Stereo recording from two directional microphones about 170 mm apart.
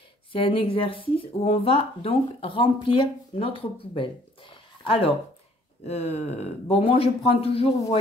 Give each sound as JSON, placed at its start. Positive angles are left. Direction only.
{"t": 0.3, "sound": "speech", "side_deg": 30}